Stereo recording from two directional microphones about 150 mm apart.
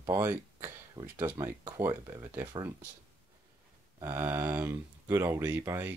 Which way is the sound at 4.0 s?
15° right (ahead or behind).